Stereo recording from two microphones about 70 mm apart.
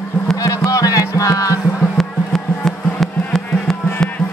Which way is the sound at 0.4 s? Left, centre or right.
Left.